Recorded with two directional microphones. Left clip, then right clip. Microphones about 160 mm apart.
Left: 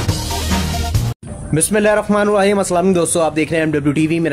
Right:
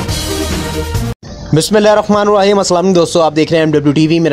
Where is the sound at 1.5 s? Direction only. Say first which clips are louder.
Right 5 dB; 35° right (ahead or behind).